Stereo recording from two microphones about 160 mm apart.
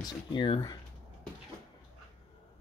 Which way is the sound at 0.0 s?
30° left (ahead or behind).